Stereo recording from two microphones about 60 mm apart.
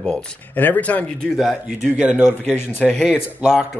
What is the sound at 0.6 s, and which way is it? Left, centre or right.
Speech, left.